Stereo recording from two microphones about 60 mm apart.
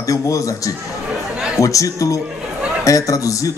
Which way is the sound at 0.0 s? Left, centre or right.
Left.